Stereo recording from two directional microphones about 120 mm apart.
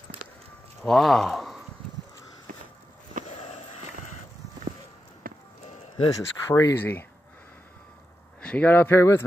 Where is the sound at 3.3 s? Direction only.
60° left (ahead or behind).